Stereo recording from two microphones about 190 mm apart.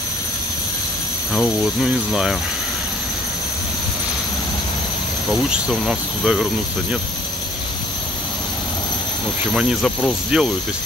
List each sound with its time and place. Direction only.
1.3 s speech: centre (ahead or behind)
5.3 s speech: centre (ahead or behind)
9.5 s speech: centre (ahead or behind)